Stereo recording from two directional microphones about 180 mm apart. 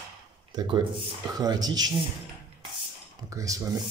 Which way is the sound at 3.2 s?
20° right (ahead or behind).